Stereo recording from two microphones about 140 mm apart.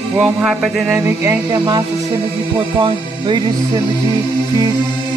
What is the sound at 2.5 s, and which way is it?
Music, 30° right (ahead or behind).